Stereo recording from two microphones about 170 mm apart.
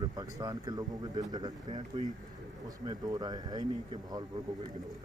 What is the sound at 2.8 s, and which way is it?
Speech, 25° right (ahead or behind).